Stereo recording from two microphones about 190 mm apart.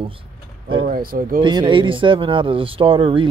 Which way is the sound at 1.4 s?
25° right (ahead or behind).